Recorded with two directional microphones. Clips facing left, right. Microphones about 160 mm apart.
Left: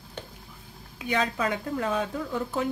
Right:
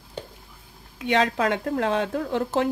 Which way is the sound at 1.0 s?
80° right.